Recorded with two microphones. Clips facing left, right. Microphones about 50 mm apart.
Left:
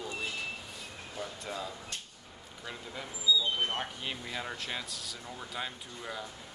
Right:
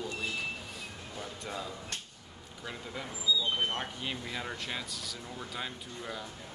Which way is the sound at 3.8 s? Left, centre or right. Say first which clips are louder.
Even; centre.